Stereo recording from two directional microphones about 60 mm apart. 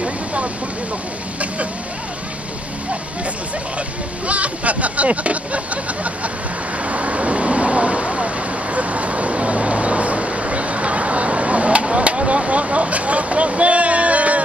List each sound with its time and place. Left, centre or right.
0.0 s a sound: right
4.3 s speech: right
6.9 s speech: right
8.7 s vehicle: right